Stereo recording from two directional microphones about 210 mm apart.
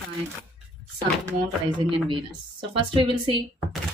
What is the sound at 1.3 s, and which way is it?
A woman's voice, 20° right (ahead or behind).